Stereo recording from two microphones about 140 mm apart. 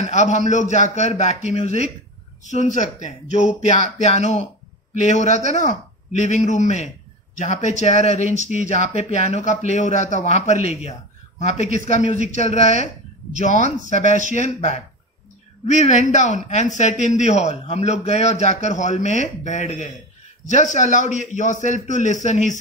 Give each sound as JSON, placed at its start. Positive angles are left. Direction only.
{"t": 0.0, "sound": "a man's voice", "side_deg": 55}